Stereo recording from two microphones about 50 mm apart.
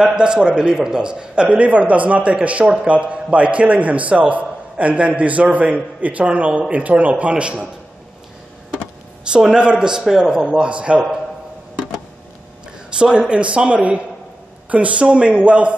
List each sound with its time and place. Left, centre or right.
0.0 s a man's voice: centre
9.3 s a man's voice: centre
12.9 s a man's voice: right